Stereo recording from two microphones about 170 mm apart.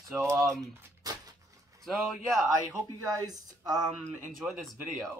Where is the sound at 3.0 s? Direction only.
20° right (ahead or behind).